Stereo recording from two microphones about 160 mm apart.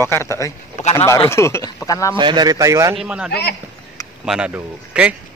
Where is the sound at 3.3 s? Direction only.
90° left.